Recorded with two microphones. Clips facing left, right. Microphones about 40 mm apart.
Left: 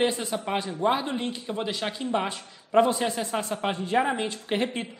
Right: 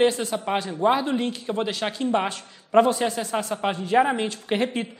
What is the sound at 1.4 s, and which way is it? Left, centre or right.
Speech, centre.